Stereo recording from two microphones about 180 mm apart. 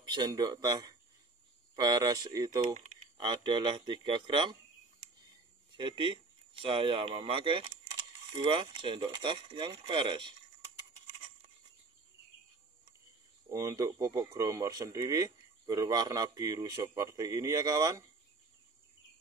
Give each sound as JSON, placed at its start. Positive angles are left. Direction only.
{"t": 0.0, "sound": "speech", "side_deg": -25}
{"t": 2.6, "sound": "speech", "side_deg": -45}
{"t": 3.2, "sound": "speech", "side_deg": -25}
{"t": 5.8, "sound": "speech", "side_deg": -25}
{"t": 13.5, "sound": "speech", "side_deg": -20}